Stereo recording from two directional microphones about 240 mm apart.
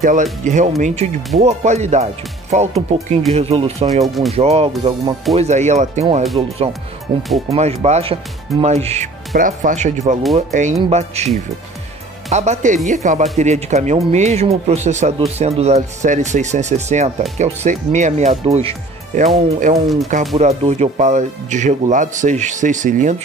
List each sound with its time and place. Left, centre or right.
0.0 s speech: right
4.0 s speech: centre
4.3 s speech: right
7.4 s speech: right